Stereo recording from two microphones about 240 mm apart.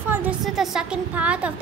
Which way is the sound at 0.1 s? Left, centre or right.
Centre.